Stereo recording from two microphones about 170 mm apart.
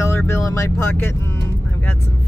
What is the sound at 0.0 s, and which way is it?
Speech, 15° left (ahead or behind).